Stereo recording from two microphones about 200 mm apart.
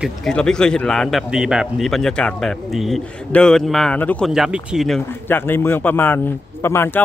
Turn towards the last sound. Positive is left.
turn(degrees=10)  # may be behind; listen again after turning